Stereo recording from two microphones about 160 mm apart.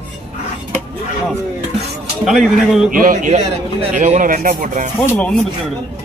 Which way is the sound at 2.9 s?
60° right (ahead or behind).